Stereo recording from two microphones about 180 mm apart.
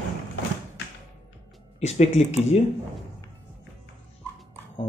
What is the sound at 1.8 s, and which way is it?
Speech, 40° left (ahead or behind).